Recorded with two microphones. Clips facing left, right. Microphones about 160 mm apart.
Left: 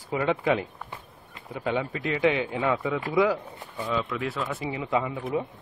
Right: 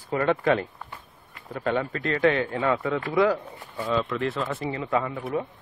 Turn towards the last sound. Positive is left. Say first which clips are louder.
# even
turn(degrees=0)  # may be behind; listen again after turning